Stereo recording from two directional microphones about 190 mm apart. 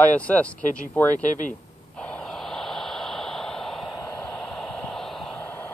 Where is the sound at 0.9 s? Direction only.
10° left (ahead or behind).